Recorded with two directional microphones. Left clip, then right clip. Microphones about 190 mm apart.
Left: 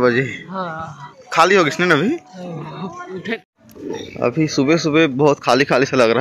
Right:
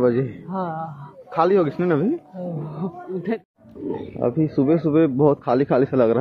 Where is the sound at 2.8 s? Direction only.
60° right (ahead or behind).